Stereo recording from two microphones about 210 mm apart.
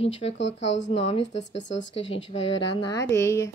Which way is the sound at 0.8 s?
30° left (ahead or behind).